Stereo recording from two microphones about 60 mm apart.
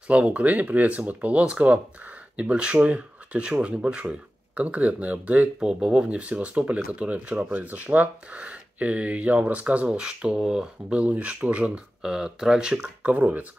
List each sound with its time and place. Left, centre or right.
0.1 s speech: right
13.1 s speech: right